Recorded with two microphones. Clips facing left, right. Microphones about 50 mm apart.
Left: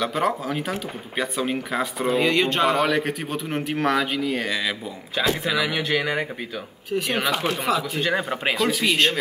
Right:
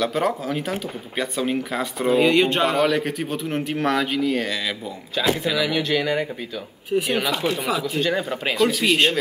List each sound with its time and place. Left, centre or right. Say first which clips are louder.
0.0 s speech: right 1 dB; centre
7.6 s speech: even; centre
8.0 s speech: even; centre
8.5 s speech: right 4 dB; centre